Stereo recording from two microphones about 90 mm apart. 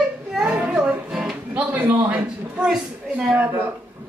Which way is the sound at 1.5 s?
15° right (ahead or behind).